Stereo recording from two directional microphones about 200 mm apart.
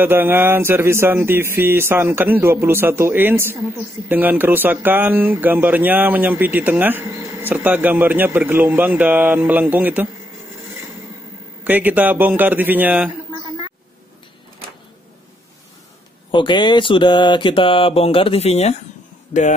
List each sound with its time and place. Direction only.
0.0 s speech: 10° right (ahead or behind)
11.6 s speech: 10° right (ahead or behind)
16.3 s mantra: 25° left (ahead or behind)